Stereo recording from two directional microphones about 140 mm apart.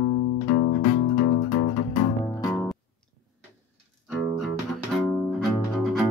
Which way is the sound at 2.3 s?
20° left (ahead or behind).